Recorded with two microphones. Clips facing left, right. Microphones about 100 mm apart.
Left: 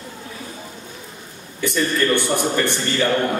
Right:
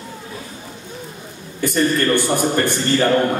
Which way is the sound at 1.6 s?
45° right (ahead or behind).